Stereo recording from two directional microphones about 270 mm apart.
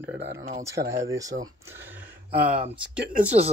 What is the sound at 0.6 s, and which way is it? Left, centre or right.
Speech, centre.